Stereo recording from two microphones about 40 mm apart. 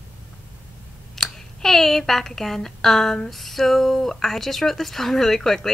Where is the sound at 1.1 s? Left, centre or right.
Centre.